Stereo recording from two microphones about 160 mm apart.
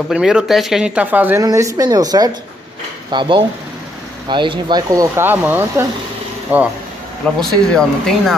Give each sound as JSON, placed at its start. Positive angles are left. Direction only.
{"t": 0.1, "sound": "speech", "side_deg": -5}
{"t": 7.2, "sound": "speech", "side_deg": 5}